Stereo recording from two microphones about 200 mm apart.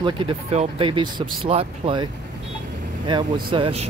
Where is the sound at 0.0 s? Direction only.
30° right (ahead or behind).